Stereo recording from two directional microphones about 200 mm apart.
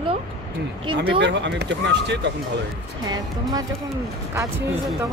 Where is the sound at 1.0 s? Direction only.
55° right (ahead or behind).